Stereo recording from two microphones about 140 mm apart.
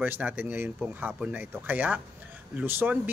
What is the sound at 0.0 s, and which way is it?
Speech, 10° right (ahead or behind).